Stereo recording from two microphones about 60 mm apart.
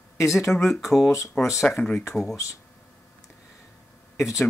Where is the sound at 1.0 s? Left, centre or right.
Left.